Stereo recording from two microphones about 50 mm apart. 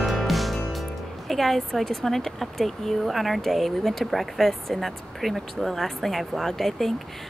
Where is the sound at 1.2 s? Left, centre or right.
Centre.